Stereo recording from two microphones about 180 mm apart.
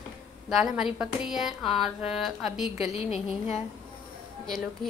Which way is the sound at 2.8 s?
35° left (ahead or behind).